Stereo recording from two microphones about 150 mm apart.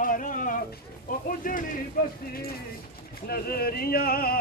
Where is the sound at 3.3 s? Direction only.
90° left.